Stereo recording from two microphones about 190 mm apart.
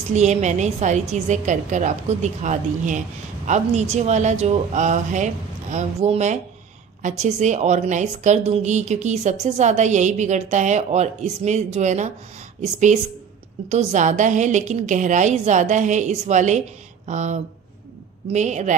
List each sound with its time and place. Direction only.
0.1 s a woman's voice: 35° right (ahead or behind)